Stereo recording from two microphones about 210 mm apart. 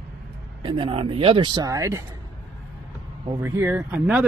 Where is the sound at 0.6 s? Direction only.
25° right (ahead or behind).